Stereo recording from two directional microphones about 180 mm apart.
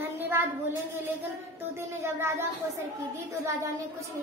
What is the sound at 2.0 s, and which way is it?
Speech, 15° right (ahead or behind).